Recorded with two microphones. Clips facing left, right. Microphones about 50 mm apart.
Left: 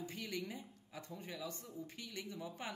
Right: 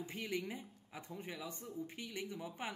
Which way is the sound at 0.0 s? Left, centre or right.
Right.